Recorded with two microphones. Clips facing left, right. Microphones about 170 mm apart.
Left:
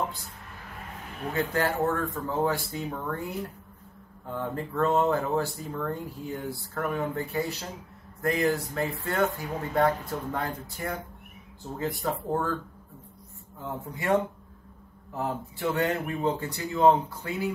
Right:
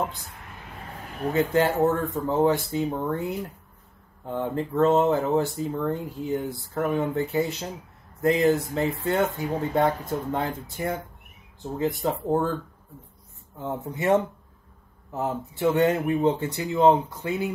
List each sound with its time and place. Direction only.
1.5 s speech: 20° right (ahead or behind)
13.6 s speech: 25° right (ahead or behind)